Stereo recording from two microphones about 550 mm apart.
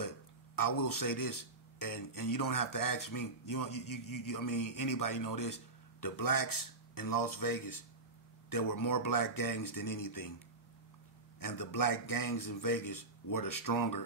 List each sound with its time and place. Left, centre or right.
0.6 s speech: left
11.3 s speech: left